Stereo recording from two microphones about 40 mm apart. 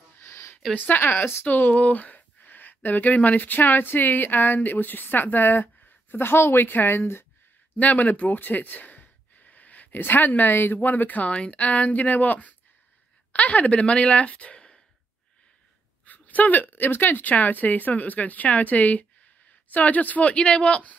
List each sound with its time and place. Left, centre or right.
0.2 s a sound: left
0.7 s speech: left
1.0 s speech: left
1.4 s speech: left
6.7 s speech: left
7.7 s a sound: left
10.0 s speech: left
11.2 s speech: left
16.1 s a sound: left
16.7 s speech: left
20.2 s speech: left